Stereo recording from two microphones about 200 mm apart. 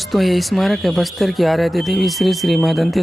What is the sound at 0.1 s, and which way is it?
Speech, centre (ahead or behind).